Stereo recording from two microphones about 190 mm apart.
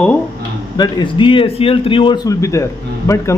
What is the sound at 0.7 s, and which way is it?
A man's voice, 25° left (ahead or behind).